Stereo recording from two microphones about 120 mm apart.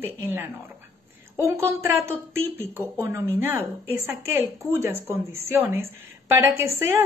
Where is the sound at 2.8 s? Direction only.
25° right (ahead or behind).